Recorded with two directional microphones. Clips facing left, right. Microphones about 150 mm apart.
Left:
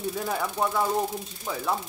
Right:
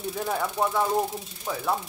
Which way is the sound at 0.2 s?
5° right (ahead or behind).